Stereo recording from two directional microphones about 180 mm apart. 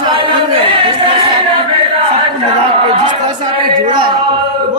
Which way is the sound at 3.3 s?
25° right (ahead or behind).